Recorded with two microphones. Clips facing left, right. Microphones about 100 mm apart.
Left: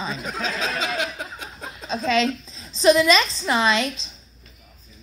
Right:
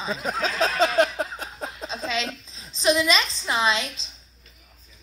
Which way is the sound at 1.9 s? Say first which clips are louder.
Left 9 dB; 15° right (ahead or behind).